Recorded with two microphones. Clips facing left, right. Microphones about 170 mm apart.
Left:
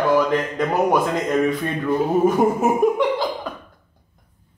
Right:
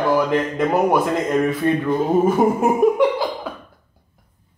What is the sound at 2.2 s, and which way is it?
Speech, 5° right (ahead or behind).